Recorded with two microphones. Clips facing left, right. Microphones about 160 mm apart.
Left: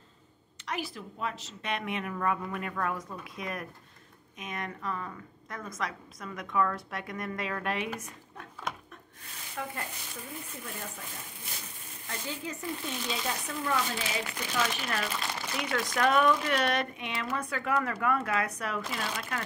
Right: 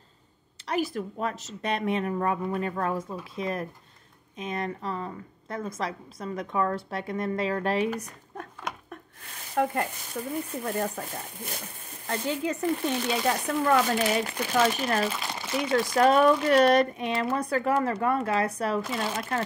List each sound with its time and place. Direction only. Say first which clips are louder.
0.7 s a woman's voice: right 8 dB; 45° right (ahead or behind)
9.6 s speech: right 12 dB; 60° right (ahead or behind)
12.1 s speech: right 9 dB; 65° right (ahead or behind)
14.5 s a woman's voice: right 8 dB; 40° right (ahead or behind)
15.3 s speech: right 10 dB; 15° right (ahead or behind)
15.9 s a woman's voice: right 5 dB; 30° right (ahead or behind)